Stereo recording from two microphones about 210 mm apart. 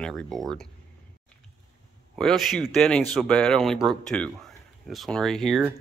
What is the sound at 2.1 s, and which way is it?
Speech, centre (ahead or behind).